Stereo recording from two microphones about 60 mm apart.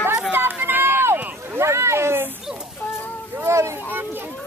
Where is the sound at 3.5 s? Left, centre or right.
Right.